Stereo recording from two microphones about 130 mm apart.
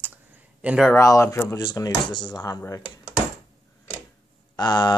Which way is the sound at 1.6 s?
30° left (ahead or behind).